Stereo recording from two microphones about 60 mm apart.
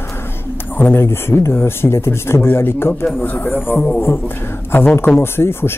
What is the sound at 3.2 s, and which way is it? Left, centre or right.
Speech, left.